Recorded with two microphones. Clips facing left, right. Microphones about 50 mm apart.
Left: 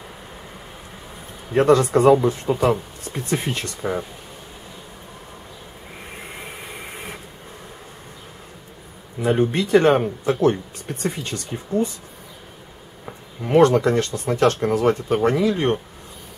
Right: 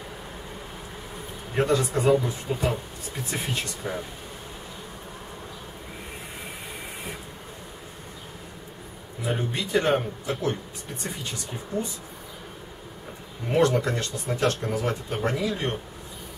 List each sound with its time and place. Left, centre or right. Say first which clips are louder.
1.6 s speech: left 8 dB; left
2.5 s speech: left 7 dB; left
9.2 s speech: left 9 dB; left
13.5 s speech: left 7 dB; left